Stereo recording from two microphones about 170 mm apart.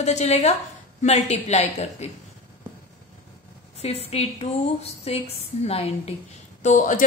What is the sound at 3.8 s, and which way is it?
A woman's voice, 35° left (ahead or behind).